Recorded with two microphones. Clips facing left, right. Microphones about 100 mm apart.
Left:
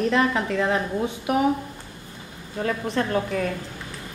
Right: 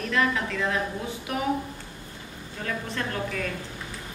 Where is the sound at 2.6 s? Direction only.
30° left (ahead or behind).